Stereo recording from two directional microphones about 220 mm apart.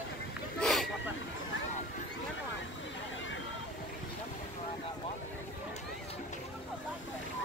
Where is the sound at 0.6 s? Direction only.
Centre (ahead or behind).